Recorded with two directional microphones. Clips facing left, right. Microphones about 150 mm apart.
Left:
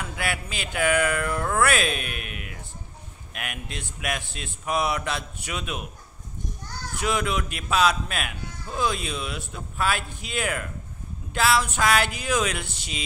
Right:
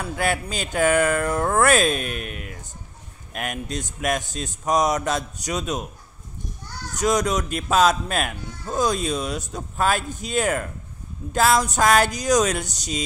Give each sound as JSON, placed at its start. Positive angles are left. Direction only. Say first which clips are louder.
{"t": 0.0, "sound": "speech", "louder": "right 6 dB", "side_deg": -40}
{"t": 7.0, "sound": "speech", "louder": "right 5 dB", "side_deg": -40}